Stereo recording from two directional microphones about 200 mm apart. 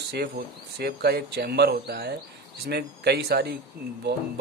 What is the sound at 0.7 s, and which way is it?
Speech, 55° right (ahead or behind).